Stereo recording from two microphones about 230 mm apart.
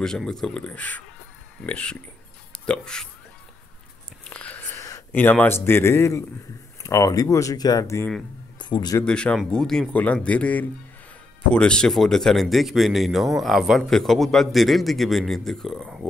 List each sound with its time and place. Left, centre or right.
0.0 s speech: centre
4.2 s a sound: centre
6.8 s speech: centre
9.0 s speech: centre